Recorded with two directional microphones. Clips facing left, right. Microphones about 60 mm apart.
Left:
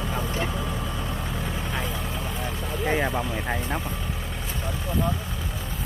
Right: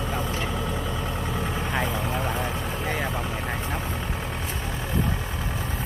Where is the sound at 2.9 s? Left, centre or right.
Centre.